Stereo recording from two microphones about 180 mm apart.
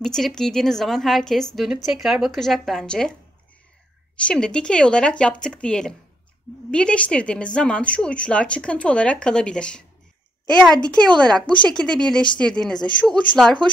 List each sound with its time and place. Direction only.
0.0 s a woman's voice: centre (ahead or behind)
4.2 s a woman's voice: 5° left (ahead or behind)
11.1 s a woman's voice: 5° left (ahead or behind)